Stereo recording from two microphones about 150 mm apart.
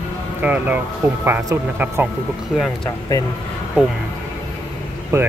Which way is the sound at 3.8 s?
5° right (ahead or behind).